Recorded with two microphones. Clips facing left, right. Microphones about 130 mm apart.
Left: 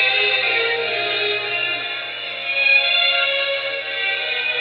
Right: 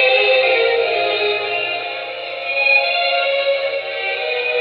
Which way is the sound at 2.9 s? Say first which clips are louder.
Right 8 dB; 30° right (ahead or behind).